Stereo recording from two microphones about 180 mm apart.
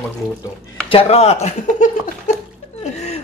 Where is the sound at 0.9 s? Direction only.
35° left (ahead or behind).